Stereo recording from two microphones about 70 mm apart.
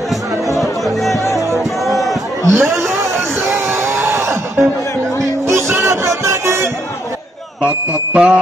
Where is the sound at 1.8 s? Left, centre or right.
Centre.